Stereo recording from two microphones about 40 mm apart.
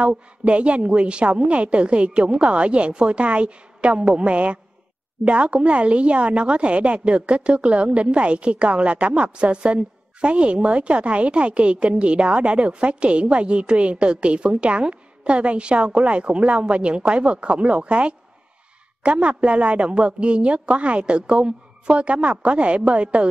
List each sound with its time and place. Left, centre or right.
0.0 s a woman's voice: right